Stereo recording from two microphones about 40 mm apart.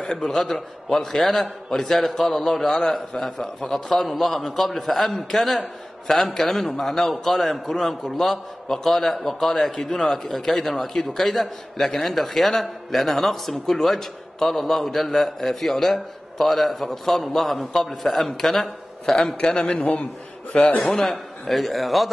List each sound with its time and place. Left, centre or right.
0.2 s a man's voice: centre
19.1 s a man's voice: centre
19.6 s a man's voice: left
21.0 s a man's voice: centre